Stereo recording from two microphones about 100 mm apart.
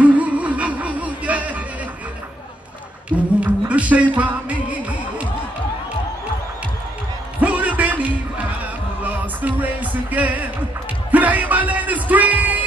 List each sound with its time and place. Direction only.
0.0 s music: 15° right (ahead or behind)
3.1 s music: 15° right (ahead or behind)
7.3 s music: 15° right (ahead or behind)